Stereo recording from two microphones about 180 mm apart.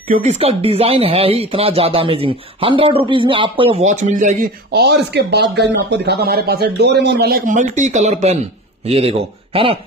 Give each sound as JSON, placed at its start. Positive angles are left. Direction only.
{"t": 0.1, "sound": "speech", "side_deg": -35}
{"t": 3.8, "sound": "speech", "side_deg": -40}
{"t": 4.6, "sound": "speech", "side_deg": -70}